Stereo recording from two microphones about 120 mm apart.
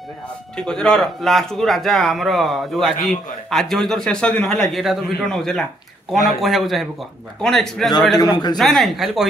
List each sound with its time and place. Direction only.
0.6 s a man's voice: 5° left (ahead or behind)
8.2 s speech: 35° left (ahead or behind)
8.5 s a man's voice: centre (ahead or behind)